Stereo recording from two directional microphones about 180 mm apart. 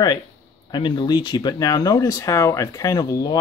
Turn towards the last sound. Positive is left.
turn(degrees=20)  # may be behind; listen again after turning